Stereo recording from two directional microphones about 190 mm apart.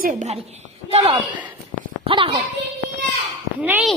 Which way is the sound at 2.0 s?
30° right (ahead or behind).